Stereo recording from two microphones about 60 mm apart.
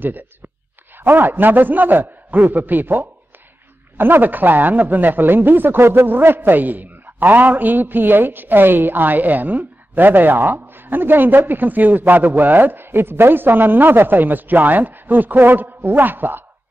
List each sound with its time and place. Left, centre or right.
0.9 s speech: right